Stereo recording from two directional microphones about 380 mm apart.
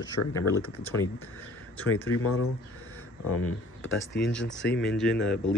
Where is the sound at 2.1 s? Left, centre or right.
Left.